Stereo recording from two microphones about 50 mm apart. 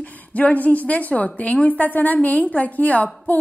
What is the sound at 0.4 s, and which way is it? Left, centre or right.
A woman's voice, left.